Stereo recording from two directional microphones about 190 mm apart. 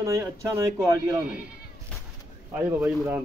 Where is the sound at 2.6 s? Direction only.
10° right (ahead or behind).